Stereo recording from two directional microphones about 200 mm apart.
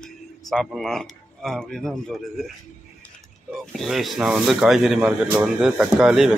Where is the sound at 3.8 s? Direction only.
Centre (ahead or behind).